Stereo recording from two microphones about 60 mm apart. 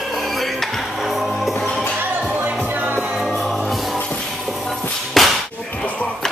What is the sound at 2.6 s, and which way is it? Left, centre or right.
Music, right.